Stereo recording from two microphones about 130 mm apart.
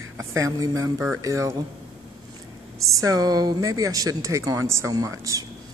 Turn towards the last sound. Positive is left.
turn(degrees=-25)  # may be behind; listen again after turning